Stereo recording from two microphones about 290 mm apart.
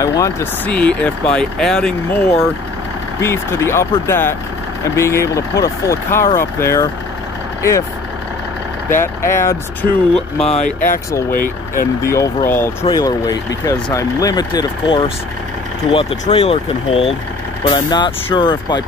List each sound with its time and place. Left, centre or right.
0.0 s speech: centre
3.2 s speech: centre
8.9 s speech: centre
10.5 s speech: left
11.7 s speech: centre